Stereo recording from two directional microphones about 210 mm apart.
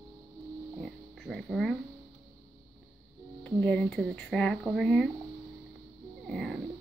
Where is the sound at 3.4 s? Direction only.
5° left (ahead or behind).